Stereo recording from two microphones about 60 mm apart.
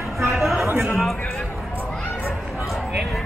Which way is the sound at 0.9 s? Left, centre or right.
Centre.